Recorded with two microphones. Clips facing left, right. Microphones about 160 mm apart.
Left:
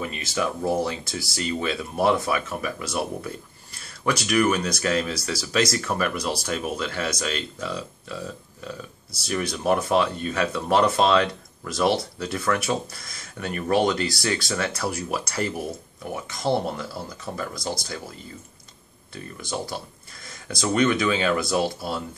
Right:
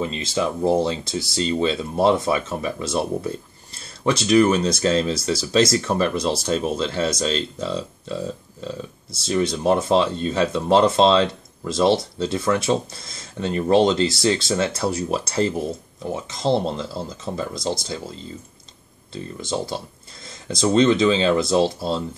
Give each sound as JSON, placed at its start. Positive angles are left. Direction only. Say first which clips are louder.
{"t": 0.0, "sound": "speech", "louder": "right 4 dB", "side_deg": -25}